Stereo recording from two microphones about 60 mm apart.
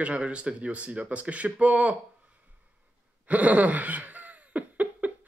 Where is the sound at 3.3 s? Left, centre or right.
Right.